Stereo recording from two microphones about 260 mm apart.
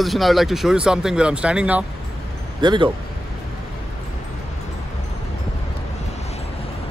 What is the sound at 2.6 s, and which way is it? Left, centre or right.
Speech, centre.